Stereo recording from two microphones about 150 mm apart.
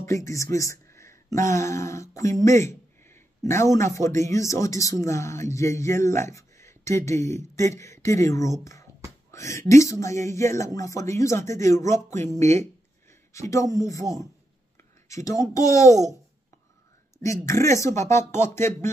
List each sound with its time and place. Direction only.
0.0 s speech: 20° left (ahead or behind)
17.2 s speech: 20° left (ahead or behind)